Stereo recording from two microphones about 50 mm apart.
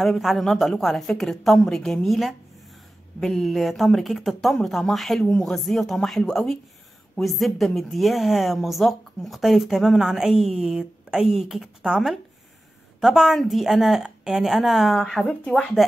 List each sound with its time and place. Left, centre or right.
0.0 s a woman's voice: centre
11.6 s a woman's voice: right
13.0 s a woman's voice: centre